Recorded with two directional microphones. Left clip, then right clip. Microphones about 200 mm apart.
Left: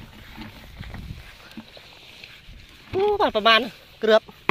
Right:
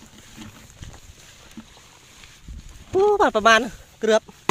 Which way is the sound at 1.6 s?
5° left (ahead or behind).